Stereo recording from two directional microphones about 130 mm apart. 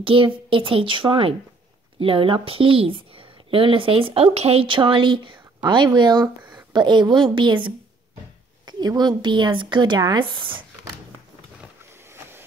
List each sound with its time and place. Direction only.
0.0 s a woman's voice: 40° right (ahead or behind)